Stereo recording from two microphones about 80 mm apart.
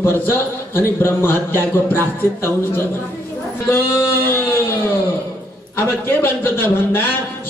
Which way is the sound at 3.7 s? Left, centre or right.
Left.